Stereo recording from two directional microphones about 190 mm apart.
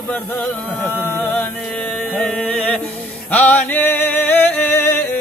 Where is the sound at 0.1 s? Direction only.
10° left (ahead or behind).